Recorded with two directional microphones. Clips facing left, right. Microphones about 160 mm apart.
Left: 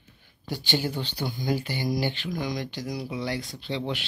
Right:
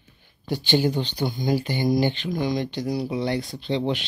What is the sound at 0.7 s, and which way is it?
Speech, 20° right (ahead or behind).